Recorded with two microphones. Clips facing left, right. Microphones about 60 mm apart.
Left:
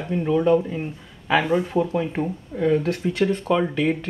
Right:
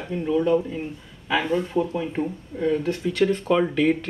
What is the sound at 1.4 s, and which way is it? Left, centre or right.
Speech, centre.